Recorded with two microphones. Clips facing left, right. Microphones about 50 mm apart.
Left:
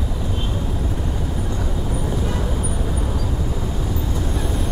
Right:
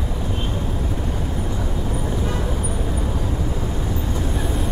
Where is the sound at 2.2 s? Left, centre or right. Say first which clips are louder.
Even; centre.